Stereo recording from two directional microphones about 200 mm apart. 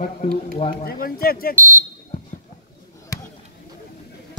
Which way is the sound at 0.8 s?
50° left (ahead or behind).